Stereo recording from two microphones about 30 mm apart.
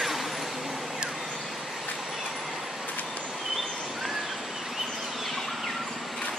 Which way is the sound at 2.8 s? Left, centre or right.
Left.